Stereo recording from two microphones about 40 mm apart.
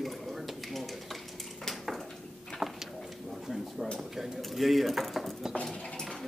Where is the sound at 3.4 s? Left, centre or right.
Centre.